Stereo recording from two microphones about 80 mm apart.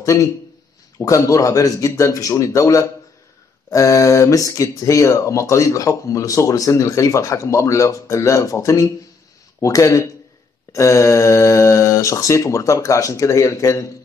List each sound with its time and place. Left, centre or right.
0.0 s speech: left